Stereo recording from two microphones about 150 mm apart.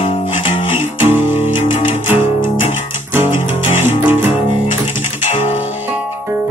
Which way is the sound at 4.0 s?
15° right (ahead or behind).